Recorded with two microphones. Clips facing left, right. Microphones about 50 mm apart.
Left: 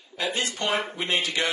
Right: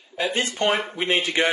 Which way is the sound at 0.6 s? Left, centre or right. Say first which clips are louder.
Right 5 dB; centre.